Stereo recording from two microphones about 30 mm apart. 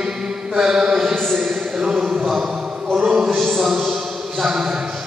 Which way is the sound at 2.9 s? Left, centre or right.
Right.